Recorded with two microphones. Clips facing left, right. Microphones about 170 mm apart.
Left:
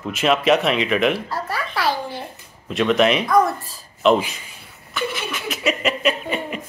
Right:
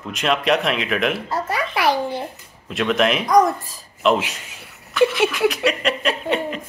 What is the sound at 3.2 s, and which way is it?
Speech, 15° right (ahead or behind).